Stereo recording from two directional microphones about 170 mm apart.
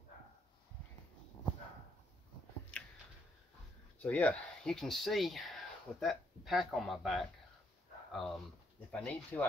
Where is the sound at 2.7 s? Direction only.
5° left (ahead or behind).